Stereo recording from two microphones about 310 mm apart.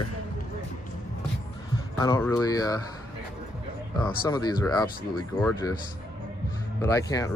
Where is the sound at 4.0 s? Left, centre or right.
Centre.